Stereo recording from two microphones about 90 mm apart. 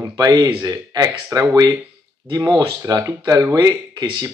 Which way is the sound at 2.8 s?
35° right (ahead or behind).